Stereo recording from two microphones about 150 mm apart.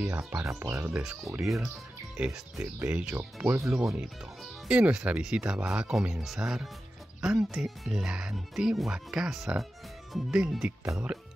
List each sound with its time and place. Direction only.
0.3 s speech: 20° right (ahead or behind)
1.0 s speech: 5° right (ahead or behind)